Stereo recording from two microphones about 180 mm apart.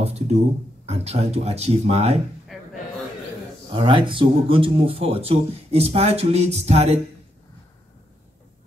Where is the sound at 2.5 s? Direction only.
Centre (ahead or behind).